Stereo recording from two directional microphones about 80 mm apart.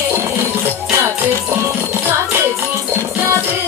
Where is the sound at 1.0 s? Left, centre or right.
Right.